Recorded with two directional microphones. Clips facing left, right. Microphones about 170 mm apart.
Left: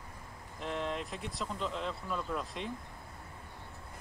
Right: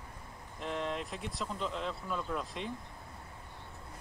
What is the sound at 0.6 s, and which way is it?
Speech, centre (ahead or behind).